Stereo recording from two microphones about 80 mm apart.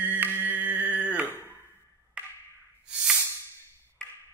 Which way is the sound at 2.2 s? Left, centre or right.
Centre.